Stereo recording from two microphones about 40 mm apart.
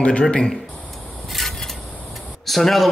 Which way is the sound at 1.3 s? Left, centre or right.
Centre.